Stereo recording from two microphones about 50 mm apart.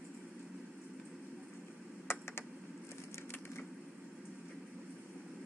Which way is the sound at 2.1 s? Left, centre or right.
Left.